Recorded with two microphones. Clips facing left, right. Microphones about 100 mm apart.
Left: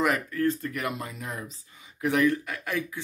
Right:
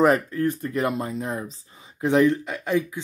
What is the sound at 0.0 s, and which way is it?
Speech, 35° right (ahead or behind).